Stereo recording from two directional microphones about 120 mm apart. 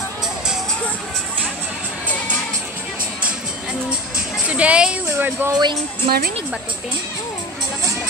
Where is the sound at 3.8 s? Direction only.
10° right (ahead or behind).